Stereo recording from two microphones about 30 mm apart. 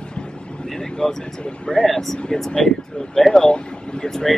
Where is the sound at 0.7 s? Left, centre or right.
Centre.